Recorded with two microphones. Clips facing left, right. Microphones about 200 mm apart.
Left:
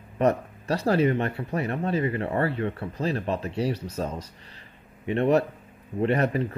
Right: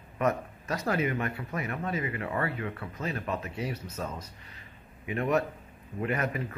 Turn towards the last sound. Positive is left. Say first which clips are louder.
# left 7 dB
turn(degrees=35)  # may be behind; listen again after turning